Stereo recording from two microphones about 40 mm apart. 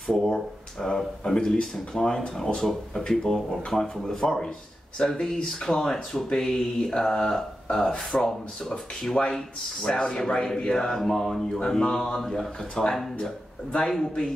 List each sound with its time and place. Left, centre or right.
0.0 s speech: centre
5.0 s speech: left; by 11.6 s centre
11.6 s speech: centre
13.7 s speech: left